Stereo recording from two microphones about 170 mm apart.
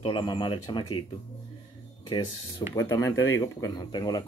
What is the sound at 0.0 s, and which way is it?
Speech, 30° left (ahead or behind).